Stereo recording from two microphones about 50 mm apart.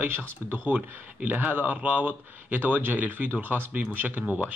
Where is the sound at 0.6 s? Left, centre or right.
Right.